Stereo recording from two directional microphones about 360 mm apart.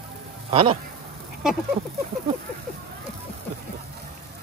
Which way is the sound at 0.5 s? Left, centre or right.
Centre.